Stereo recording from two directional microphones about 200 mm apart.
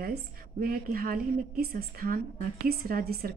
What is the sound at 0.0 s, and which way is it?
A woman's voice, 45° right (ahead or behind).